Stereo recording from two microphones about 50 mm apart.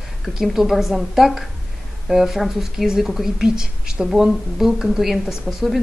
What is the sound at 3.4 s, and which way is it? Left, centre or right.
A woman's voice, centre.